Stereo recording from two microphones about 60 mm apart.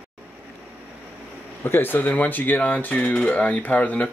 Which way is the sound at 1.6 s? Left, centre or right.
Left.